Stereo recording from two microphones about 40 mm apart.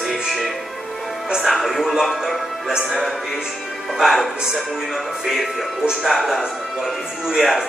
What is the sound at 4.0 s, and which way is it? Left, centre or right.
A man's voice, centre.